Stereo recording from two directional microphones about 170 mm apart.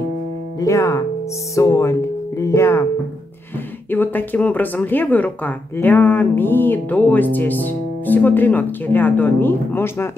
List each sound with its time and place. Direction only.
0.6 s speech: 20° left (ahead or behind)
3.9 s speech: 10° left (ahead or behind)